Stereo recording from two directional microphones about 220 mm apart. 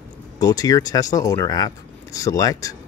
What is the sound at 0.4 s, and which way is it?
A man's voice, 15° left (ahead or behind).